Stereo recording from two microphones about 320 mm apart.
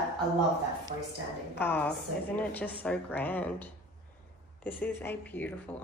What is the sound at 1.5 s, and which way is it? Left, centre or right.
A woman's voice, centre.